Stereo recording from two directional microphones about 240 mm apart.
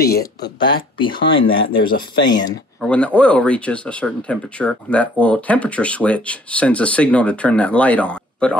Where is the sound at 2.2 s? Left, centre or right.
Centre.